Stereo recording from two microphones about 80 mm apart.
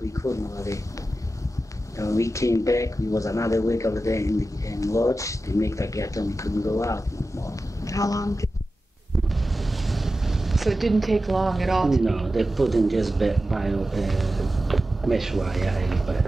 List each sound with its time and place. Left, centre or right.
0.0 s speech: left
2.0 s speech: left
9.3 s speech: centre